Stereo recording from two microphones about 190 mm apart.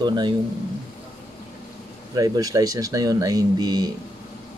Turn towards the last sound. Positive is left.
turn(degrees=-20)  # may be behind; listen again after turning